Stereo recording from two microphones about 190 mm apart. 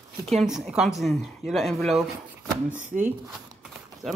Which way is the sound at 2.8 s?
40° right (ahead or behind).